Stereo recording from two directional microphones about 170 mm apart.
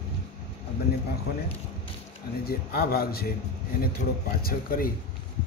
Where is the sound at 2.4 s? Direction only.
65° left (ahead or behind).